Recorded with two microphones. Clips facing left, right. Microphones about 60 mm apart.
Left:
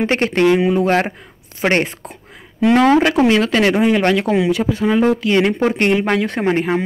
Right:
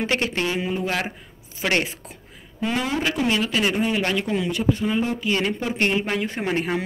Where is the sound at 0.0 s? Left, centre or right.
Left.